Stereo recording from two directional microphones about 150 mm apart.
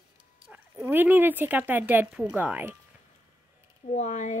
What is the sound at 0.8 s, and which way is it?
A woman's voice, 15° right (ahead or behind).